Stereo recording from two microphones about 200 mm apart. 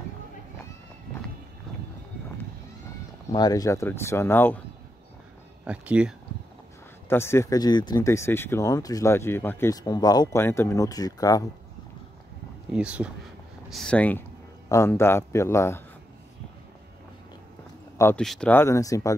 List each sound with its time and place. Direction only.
3.3 s speech: 20° left (ahead or behind)
5.7 s speech: 5° right (ahead or behind)
7.1 s speech: 10° left (ahead or behind)
12.7 s speech: 5° right (ahead or behind); by 15.8 s 15° left (ahead or behind)
17.9 s speech: 10° left (ahead or behind)